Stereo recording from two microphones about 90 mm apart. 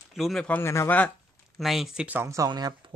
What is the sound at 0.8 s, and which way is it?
Speech, 20° left (ahead or behind).